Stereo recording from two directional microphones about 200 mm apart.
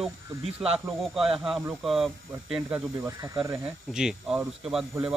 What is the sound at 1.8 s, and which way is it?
Speech, centre (ahead or behind).